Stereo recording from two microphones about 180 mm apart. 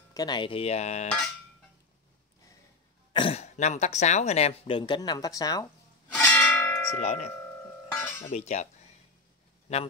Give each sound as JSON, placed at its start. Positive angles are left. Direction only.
{"t": 0.1, "sound": "speech", "side_deg": 25}
{"t": 3.1, "sound": "speech", "side_deg": 30}
{"t": 6.2, "sound": "church bell", "side_deg": 10}
{"t": 7.0, "sound": "speech", "side_deg": 40}
{"t": 9.7, "sound": "speech", "side_deg": 35}